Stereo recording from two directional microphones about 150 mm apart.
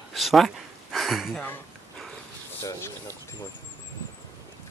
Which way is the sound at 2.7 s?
15° left (ahead or behind).